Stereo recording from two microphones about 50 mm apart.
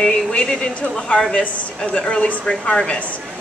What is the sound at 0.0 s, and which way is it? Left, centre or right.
A woman's voice, centre.